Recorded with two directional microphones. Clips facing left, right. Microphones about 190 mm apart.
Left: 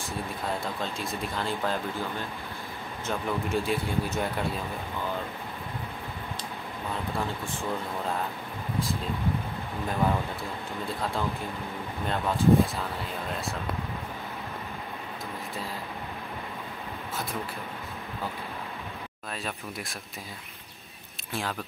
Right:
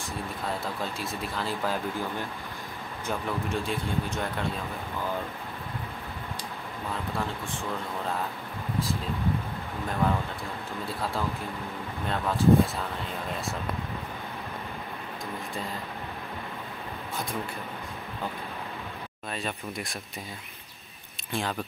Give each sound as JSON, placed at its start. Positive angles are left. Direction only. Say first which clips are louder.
{"t": 0.5, "sound": "speech", "louder": "even", "side_deg": 0}
{"t": 3.3, "sound": "speech", "louder": "left 4 dB", "side_deg": 0}
{"t": 10.0, "sound": "speech", "louder": "even", "side_deg": 5}
{"t": 12.1, "sound": "speech", "louder": "even", "side_deg": 0}
{"t": 19.3, "sound": "speech", "louder": "right 2 dB", "side_deg": 0}
{"t": 21.3, "sound": "speech", "louder": "right 2 dB", "side_deg": 0}